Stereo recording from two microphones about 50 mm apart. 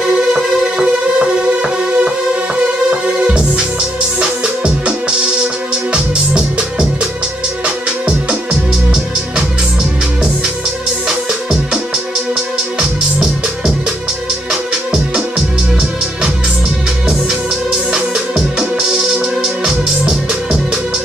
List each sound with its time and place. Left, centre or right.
0.3 s music: centre
1.1 s music: right
5.9 s music: right
14.5 s music: centre
17.9 s music: centre